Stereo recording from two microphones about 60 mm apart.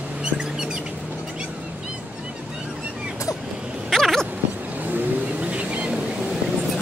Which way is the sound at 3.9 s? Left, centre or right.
Centre.